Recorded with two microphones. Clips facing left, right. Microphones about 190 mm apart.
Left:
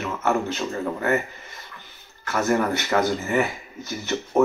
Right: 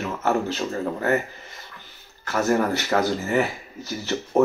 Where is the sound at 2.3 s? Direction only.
35° right (ahead or behind).